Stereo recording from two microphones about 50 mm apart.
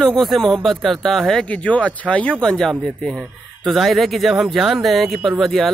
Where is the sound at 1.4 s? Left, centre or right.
Left.